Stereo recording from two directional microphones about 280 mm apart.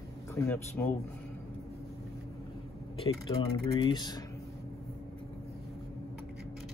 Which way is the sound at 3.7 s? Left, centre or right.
Centre.